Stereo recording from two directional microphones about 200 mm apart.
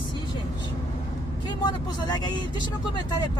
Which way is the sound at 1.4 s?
20° left (ahead or behind).